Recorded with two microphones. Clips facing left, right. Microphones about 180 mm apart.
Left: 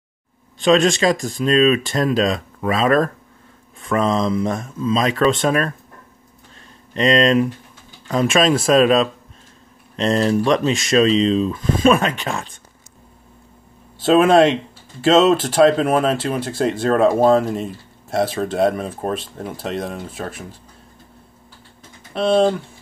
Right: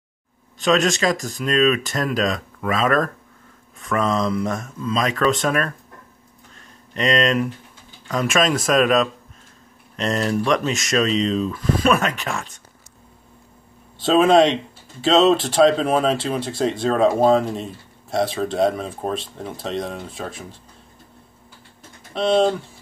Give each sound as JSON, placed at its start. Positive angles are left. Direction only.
{"t": 0.6, "sound": "speech", "side_deg": 30}
{"t": 6.9, "sound": "speech", "side_deg": 30}
{"t": 14.0, "sound": "speech", "side_deg": 0}
{"t": 22.1, "sound": "speech", "side_deg": 0}